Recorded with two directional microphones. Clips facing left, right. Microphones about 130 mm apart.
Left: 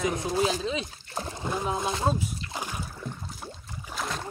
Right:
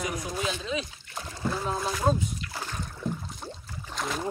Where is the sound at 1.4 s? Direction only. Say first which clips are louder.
Right 1 dB; 15° left (ahead or behind).